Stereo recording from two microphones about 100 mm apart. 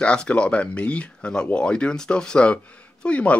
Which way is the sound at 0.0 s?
10° left (ahead or behind).